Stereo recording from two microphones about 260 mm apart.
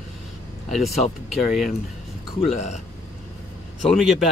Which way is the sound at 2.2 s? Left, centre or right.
Left.